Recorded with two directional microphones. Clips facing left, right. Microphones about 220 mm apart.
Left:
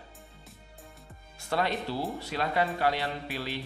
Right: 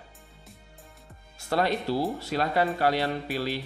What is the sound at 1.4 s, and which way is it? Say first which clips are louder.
Speech: right 4 dB; 40° right (ahead or behind).